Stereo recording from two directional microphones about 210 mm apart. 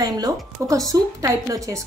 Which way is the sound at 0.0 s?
15° right (ahead or behind).